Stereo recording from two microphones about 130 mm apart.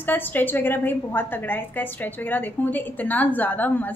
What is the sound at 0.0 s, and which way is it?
A woman's voice, 15° left (ahead or behind).